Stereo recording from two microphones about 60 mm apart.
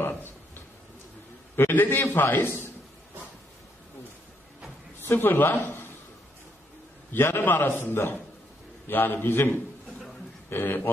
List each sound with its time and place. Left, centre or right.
1.6 s a man's voice: left
5.0 s speech: left
7.1 s a man's voice: left